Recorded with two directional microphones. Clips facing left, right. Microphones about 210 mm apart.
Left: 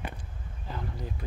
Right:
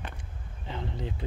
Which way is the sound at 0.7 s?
25° right (ahead or behind).